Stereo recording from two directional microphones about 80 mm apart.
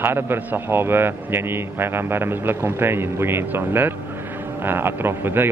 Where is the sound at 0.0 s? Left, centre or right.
Right.